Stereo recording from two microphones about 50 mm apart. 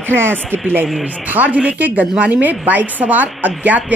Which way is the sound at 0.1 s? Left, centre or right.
Right.